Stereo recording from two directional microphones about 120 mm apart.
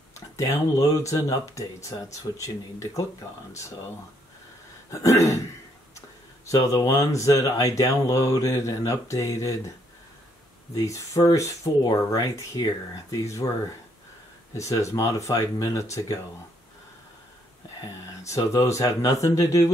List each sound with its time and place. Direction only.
0.1 s speech: 25° left (ahead or behind)
4.9 s speech: 25° left (ahead or behind)
10.7 s speech: 25° left (ahead or behind)
14.6 s speech: 25° left (ahead or behind)
17.8 s speech: 25° left (ahead or behind)